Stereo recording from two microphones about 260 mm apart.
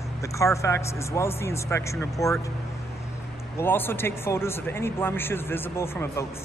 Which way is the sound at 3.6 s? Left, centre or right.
Centre.